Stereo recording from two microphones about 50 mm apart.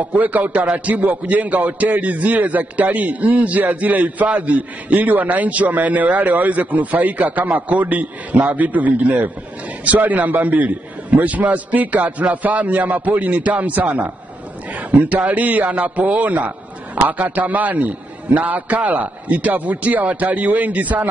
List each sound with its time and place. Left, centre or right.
0.0 s a man's voice: right